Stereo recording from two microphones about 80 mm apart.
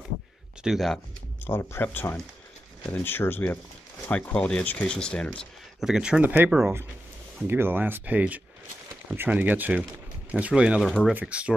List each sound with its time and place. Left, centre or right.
0.7 s speech: centre
1.4 s speech: left
4.1 s speech: centre
5.8 s speech: centre
6.2 s speech: right
10.8 s speech: centre
11.1 s speech: centre